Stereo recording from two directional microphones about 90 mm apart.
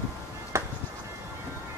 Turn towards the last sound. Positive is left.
turn(degrees=-30)  # may be behind; listen again after turning